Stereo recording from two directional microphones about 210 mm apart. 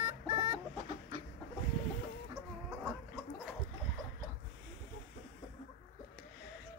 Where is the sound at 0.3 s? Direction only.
25° right (ahead or behind).